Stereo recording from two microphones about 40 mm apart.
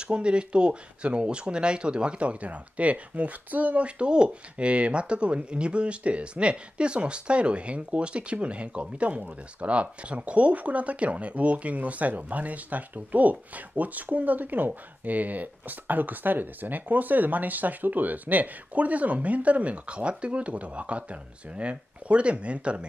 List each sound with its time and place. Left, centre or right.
0.0 s speech: right